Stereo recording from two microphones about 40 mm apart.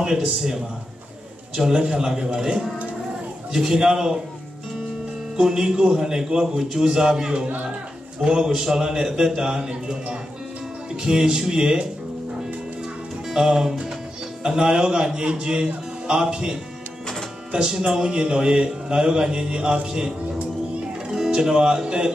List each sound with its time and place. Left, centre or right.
0.0 s a man's voice: centre
5.6 s a man's voice: right
13.3 s a man's voice: centre